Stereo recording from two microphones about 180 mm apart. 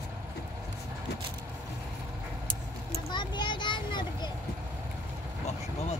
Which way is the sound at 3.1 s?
25° left (ahead or behind).